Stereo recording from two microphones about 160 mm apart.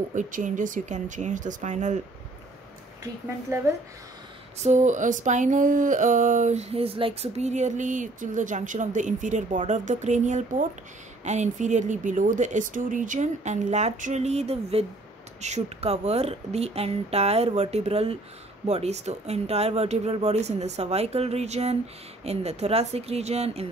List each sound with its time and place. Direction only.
0.1 s speech: 50° right (ahead or behind)
3.0 s a woman's voice: 15° right (ahead or behind)
4.6 s speech: 45° right (ahead or behind)